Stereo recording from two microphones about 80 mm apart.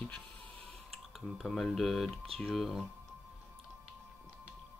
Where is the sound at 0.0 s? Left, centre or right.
Centre.